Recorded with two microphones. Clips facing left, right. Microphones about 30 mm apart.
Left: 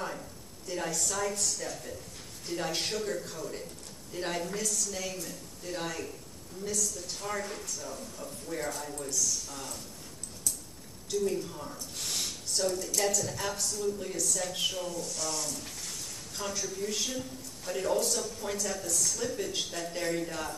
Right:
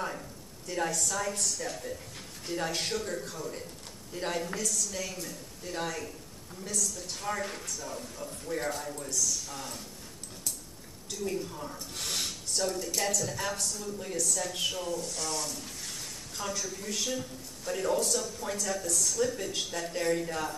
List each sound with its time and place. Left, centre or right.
0.0 s a sound: centre
2.4 s speech: centre
5.2 s speech: centre
8.2 s speech: right
8.5 s speech: centre
8.8 s speech: centre
11.1 s speech: centre
12.6 s a woman's voice: centre